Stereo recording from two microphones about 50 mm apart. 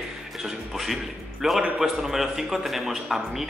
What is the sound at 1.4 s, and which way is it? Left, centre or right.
A man's voice, centre.